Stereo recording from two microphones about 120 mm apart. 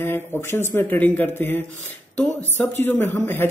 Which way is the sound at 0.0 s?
20° left (ahead or behind).